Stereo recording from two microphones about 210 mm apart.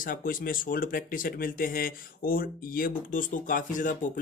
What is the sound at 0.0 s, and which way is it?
Speech, 40° left (ahead or behind).